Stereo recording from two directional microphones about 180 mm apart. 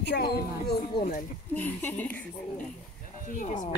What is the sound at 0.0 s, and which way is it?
Speech, 65° left (ahead or behind).